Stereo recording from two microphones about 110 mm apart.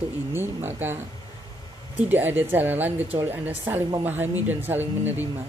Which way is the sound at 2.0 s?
20° right (ahead or behind).